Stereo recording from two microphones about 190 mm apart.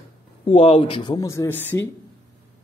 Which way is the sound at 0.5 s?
30° left (ahead or behind).